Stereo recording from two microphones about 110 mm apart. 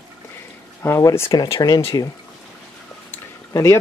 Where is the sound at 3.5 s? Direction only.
25° left (ahead or behind).